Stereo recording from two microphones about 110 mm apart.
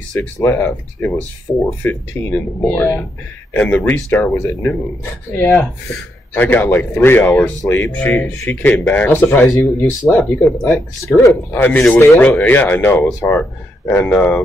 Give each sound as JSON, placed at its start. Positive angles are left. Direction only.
{"t": 0.2, "sound": "speech", "side_deg": 20}